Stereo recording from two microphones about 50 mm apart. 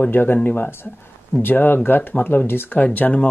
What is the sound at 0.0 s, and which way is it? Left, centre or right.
Speech, left.